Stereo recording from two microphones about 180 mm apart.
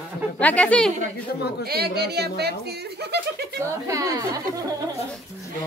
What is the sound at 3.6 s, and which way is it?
A woman's voice, 15° right (ahead or behind).